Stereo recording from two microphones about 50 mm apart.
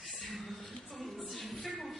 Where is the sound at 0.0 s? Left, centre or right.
Centre.